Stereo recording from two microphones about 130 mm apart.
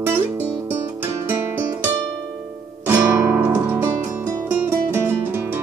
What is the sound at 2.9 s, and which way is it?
Guitar, 20° right (ahead or behind).